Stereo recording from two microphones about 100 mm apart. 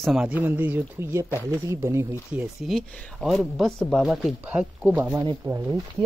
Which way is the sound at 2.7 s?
Centre (ahead or behind).